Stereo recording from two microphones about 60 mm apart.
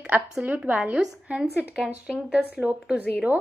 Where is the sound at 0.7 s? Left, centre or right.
Right.